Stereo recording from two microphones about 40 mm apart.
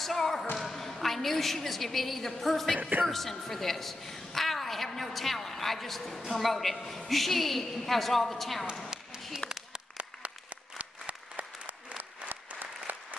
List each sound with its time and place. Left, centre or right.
0.0 s a woman's voice: centre
9.7 s applause: right
12.0 s applause: right